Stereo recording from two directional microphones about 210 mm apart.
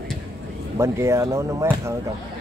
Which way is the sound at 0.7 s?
15° right (ahead or behind).